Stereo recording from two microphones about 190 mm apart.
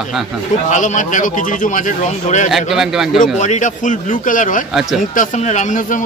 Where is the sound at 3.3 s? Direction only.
40° left (ahead or behind).